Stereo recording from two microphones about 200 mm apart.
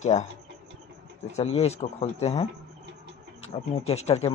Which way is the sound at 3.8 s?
30° left (ahead or behind).